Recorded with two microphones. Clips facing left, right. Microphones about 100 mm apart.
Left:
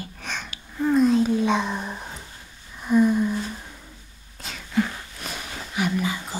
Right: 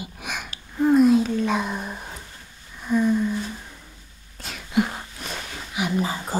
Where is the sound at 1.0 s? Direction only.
5° right (ahead or behind).